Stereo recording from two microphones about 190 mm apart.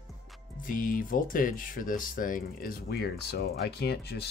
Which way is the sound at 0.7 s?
45° left (ahead or behind).